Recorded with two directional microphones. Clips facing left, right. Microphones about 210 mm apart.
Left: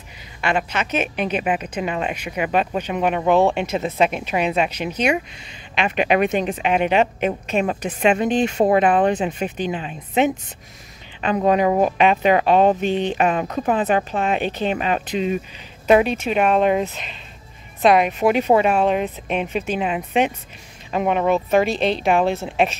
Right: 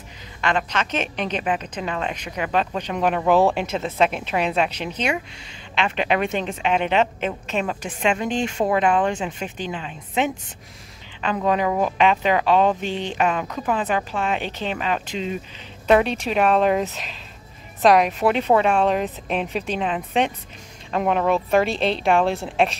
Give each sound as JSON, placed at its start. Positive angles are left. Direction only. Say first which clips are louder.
{"t": 0.4, "sound": "a woman's voice", "louder": "left 1 dB", "side_deg": 10}
{"t": 15.9, "sound": "a woman's voice", "louder": "left 2 dB", "side_deg": 5}